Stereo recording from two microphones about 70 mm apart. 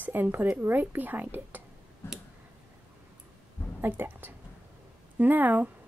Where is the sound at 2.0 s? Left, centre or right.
Left.